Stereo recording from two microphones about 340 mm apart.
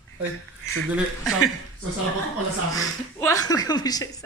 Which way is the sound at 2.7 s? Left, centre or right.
Centre.